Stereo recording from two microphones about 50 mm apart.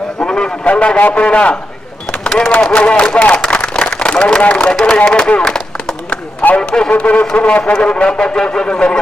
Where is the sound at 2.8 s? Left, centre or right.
Left.